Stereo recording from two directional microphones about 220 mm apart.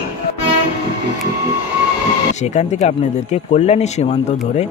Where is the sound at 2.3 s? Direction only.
30° left (ahead or behind).